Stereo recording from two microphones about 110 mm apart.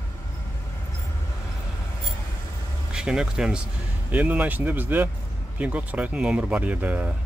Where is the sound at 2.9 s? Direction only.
5° right (ahead or behind).